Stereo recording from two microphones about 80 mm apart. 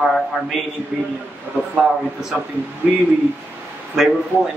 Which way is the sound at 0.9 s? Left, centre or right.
Centre.